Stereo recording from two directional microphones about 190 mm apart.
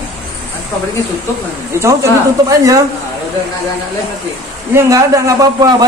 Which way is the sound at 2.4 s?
15° right (ahead or behind).